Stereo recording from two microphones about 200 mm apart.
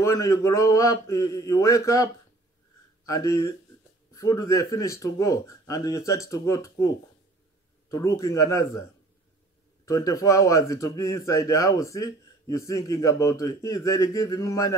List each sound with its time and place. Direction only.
0.0 s a man's voice: 15° left (ahead or behind)
3.1 s a man's voice: 15° left (ahead or behind)
7.9 s a man's voice: 15° left (ahead or behind)
9.8 s a man's voice: 15° left (ahead or behind)